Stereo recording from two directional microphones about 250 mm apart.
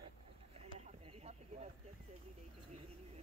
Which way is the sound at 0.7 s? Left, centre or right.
Right.